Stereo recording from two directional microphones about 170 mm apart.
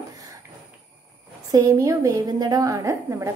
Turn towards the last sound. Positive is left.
turn(degrees=-15)  # may be behind; listen again after turning